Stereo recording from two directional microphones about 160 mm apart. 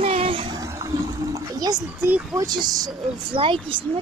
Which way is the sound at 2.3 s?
25° right (ahead or behind).